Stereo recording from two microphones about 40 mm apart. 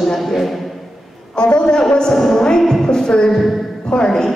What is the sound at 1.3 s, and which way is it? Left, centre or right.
A man's voice, left.